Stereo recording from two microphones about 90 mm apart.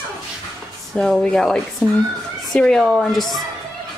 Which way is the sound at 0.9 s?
5° left (ahead or behind).